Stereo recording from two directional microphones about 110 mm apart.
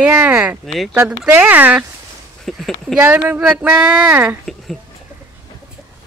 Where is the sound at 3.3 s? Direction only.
15° right (ahead or behind).